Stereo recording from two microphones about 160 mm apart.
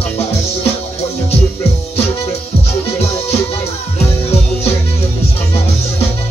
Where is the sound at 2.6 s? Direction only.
40° left (ahead or behind).